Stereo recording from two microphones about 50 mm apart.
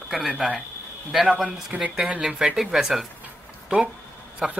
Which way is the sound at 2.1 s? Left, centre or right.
Right.